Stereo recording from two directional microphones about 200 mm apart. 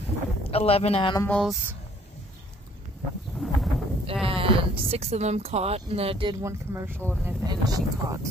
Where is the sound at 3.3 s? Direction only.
Centre (ahead or behind).